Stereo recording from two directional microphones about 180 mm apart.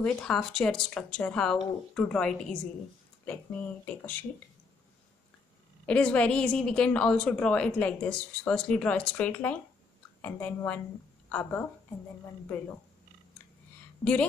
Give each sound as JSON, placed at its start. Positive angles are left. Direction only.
{"t": 0.0, "sound": "a woman's voice", "side_deg": 5}
{"t": 3.8, "sound": "a woman's voice", "side_deg": 10}
{"t": 5.9, "sound": "a woman's voice", "side_deg": 5}
{"t": 14.0, "sound": "a woman's voice", "side_deg": 15}